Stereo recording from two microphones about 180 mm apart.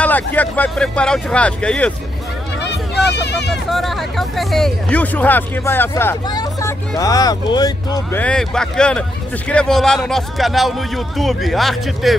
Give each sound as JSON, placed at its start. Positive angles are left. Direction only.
{"t": 0.0, "sound": "speech", "side_deg": 10}
{"t": 2.7, "sound": "speech", "side_deg": 70}
{"t": 3.7, "sound": "speech", "side_deg": 0}
{"t": 8.2, "sound": "a man's voice", "side_deg": 5}